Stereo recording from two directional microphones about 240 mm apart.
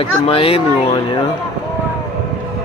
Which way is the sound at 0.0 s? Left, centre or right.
Left.